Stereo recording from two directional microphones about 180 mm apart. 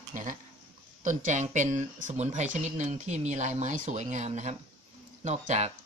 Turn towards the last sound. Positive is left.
turn(degrees=-40)  # may be behind; listen again after turning